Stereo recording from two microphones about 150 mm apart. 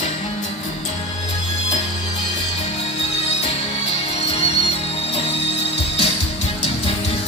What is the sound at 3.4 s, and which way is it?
Music, 45° left (ahead or behind).